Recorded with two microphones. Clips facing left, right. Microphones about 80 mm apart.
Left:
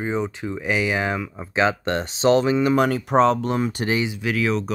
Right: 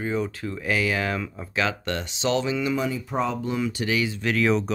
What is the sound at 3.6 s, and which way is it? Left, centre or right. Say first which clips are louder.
Speech: left 3 dB; left.